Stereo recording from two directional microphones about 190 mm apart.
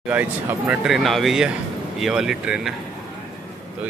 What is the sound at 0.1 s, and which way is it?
Speech, 5° right (ahead or behind).